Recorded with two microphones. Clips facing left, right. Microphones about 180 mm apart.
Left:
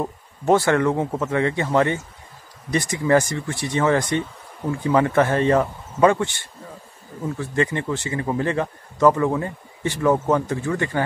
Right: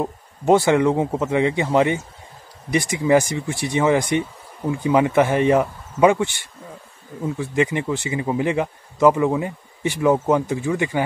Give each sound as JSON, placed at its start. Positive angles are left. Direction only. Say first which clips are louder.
{"t": 0.0, "sound": "speech", "louder": "right 2 dB", "side_deg": -15}